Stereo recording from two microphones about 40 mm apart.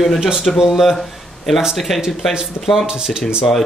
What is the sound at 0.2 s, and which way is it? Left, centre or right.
Speech, centre.